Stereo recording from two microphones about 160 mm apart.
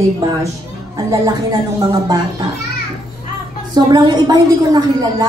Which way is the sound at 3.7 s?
25° right (ahead or behind).